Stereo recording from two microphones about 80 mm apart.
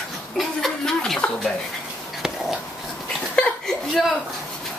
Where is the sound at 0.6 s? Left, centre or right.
Centre.